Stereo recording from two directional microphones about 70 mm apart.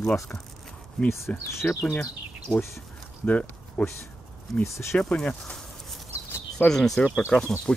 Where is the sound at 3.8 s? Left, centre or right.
Centre.